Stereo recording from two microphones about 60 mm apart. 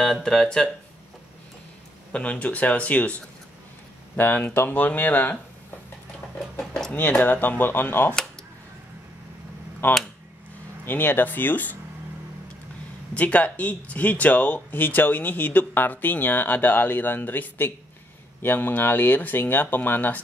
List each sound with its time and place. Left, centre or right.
0.0 s speech: centre
2.1 s speech: left
6.9 s speech: left
9.8 s speech: left
13.1 s speech: left